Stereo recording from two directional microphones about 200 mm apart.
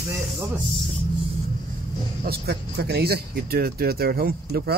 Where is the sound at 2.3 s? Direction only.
50° right (ahead or behind).